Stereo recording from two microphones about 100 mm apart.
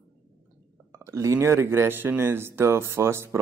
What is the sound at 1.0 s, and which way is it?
Speech, 30° right (ahead or behind).